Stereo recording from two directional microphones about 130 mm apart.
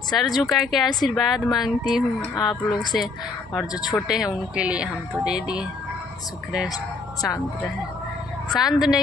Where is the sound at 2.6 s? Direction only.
30° left (ahead or behind).